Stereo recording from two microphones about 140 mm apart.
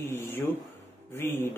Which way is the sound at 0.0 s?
15° left (ahead or behind).